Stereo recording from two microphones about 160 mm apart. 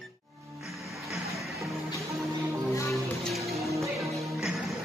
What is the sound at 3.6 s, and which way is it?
Music, 20° right (ahead or behind).